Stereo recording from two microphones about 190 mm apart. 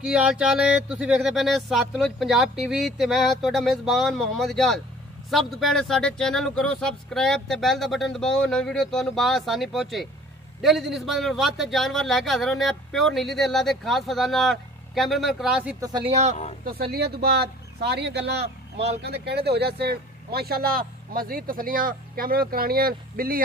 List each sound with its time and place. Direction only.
0.0 s a man's voice: 5° right (ahead or behind)
16.1 s speech: 35° right (ahead or behind)
16.6 s speech: 55° right (ahead or behind)